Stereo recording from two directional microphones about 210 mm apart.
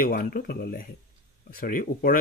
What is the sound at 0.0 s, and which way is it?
Speech, 45° left (ahead or behind).